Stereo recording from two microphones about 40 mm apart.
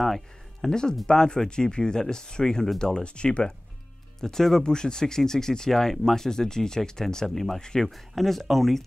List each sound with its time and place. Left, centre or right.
0.0 s music: centre
0.7 s speech: centre
4.2 s speech: centre
7.9 s speech: centre